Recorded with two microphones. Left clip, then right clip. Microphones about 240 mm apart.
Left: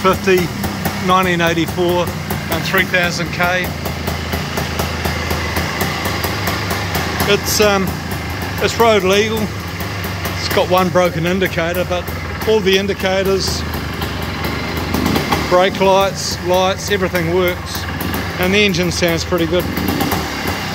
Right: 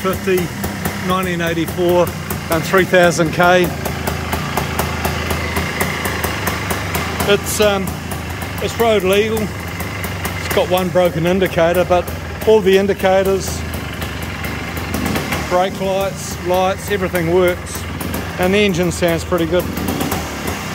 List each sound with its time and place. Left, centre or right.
0.0 s speech: centre
2.7 s speech: right
7.2 s speech: centre
10.5 s speech: centre
15.5 s speech: centre